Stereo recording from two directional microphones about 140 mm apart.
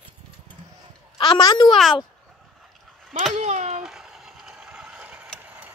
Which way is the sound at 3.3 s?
55° right (ahead or behind).